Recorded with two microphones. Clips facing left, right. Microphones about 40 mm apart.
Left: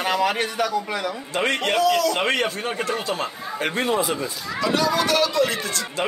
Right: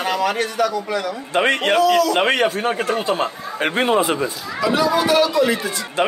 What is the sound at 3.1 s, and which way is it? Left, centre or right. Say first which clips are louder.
Speech: right 5 dB; right.